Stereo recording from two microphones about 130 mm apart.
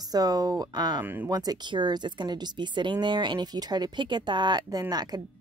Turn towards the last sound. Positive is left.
turn(degrees=-30)  # may be behind; listen again after turning